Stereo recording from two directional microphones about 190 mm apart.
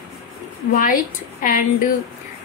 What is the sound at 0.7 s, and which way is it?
A woman's voice, 45° left (ahead or behind).